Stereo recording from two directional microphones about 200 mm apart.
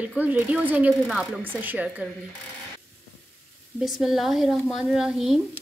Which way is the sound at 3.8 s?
Centre (ahead or behind).